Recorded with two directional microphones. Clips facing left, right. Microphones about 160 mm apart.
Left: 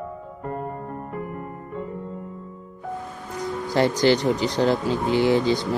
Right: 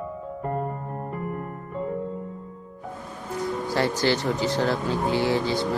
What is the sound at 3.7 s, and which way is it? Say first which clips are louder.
Speech: left 5 dB; 20° left (ahead or behind).